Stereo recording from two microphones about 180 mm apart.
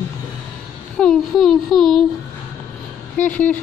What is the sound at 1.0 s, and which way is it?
Speech, centre (ahead or behind).